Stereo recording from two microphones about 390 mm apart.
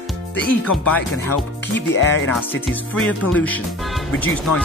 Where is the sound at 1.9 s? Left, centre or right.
Left.